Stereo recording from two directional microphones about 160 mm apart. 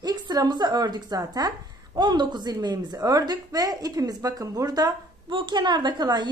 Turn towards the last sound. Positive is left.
turn(degrees=-25)  # may be behind; listen again after turning